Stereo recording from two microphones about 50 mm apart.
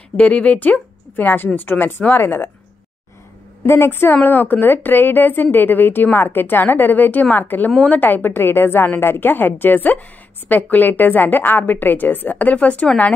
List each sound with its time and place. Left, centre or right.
0.2 s a woman's voice: left
3.6 s a woman's voice: left
4.2 s a woman's voice: left